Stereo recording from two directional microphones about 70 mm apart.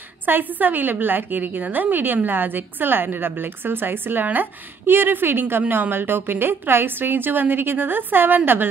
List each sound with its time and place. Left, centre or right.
0.2 s a woman's voice: right